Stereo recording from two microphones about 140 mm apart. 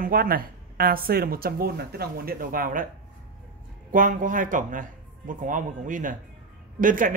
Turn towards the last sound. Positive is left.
turn(degrees=-75)  # may be behind; listen again after turning